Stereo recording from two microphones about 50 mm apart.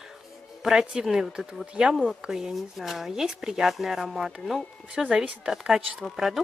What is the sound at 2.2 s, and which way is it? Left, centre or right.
Speech, centre.